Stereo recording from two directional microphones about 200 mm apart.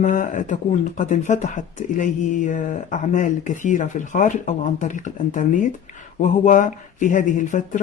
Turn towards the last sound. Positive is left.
turn(degrees=40)  # may be behind; listen again after turning